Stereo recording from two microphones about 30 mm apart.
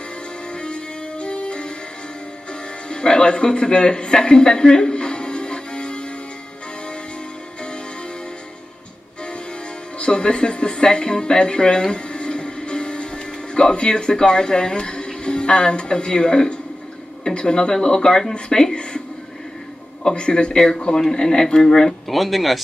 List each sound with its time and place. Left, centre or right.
0.6 s music: left
2.9 s speech: left
4.9 s music: left
9.9 s a man's voice: left
21.1 s speech: left
22.0 s speech: centre